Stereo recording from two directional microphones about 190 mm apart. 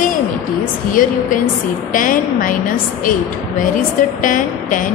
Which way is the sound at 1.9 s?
45° left (ahead or behind).